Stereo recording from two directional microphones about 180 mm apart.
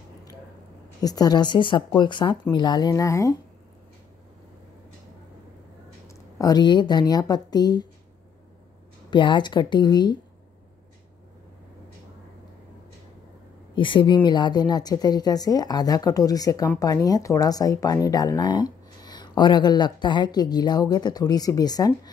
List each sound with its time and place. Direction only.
1.0 s speech: 20° left (ahead or behind)
6.0 s speech: 20° left (ahead or behind)
9.1 s speech: 25° left (ahead or behind)
13.7 s speech: 25° left (ahead or behind)